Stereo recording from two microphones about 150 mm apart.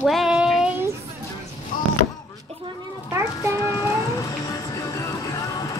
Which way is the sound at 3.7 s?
20° left (ahead or behind).